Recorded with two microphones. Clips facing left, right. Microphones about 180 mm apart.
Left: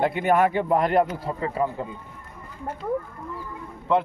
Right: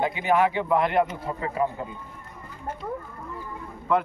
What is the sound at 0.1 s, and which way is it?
Speech, 50° left (ahead or behind).